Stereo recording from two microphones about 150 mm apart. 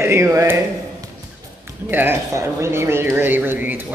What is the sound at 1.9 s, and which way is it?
Speech, 15° right (ahead or behind).